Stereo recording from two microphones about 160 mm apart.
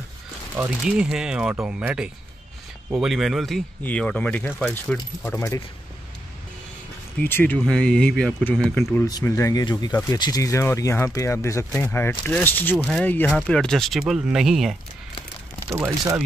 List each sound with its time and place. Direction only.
0.6 s speech: 5° right (ahead or behind)
7.2 s speech: 10° left (ahead or behind)
8.9 s speech: 20° left (ahead or behind); by 14.8 s centre (ahead or behind)
15.7 s speech: 15° right (ahead or behind)